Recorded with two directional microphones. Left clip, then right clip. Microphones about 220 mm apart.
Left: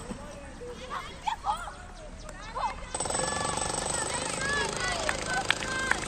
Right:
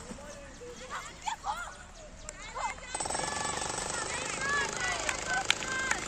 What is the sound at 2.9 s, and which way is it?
Jackhammer, 40° left (ahead or behind).